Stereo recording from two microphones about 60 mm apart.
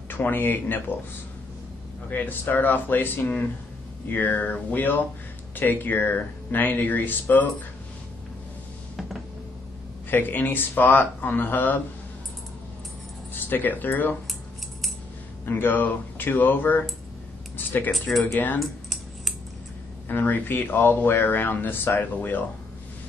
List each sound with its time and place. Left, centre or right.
0.1 s speech: left
2.0 s speech: left
10.0 s speech: left
13.3 s speech: left
15.4 s speech: left
18.6 s typing: centre
20.1 s speech: left